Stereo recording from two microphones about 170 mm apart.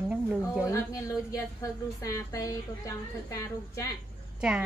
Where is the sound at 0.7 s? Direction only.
20° left (ahead or behind).